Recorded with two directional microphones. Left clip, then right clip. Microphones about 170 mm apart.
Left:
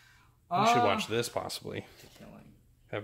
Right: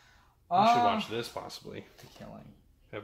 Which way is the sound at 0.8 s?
55° left (ahead or behind).